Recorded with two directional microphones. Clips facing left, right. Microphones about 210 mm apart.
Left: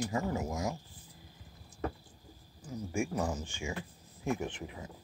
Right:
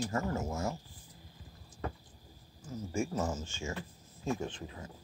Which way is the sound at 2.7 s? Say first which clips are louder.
Even; 15° left (ahead or behind).